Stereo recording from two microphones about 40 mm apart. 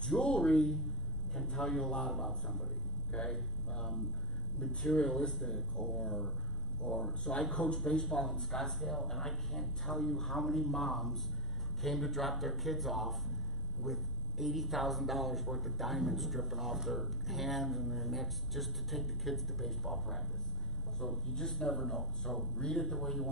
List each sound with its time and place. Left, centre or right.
0.2 s a sound: left
1.8 s speech: left
2.0 s speech: centre
3.1 s speech: left; by 5.9 s centre
5.9 s speech: left
7.0 s speech: left
8.0 s speech: centre